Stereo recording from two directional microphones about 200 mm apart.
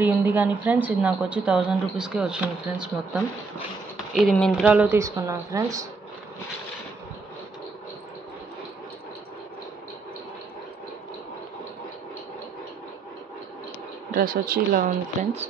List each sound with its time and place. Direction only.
0.0 s a woman's voice: 10° right (ahead or behind)
4.6 s a woman's voice: 10° right (ahead or behind)
14.1 s speech: 45° right (ahead or behind)